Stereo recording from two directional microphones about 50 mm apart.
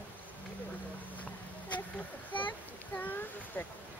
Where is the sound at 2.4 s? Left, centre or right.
Left.